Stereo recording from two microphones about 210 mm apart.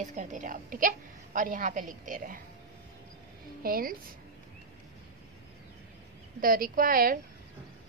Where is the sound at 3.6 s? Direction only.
45° right (ahead or behind).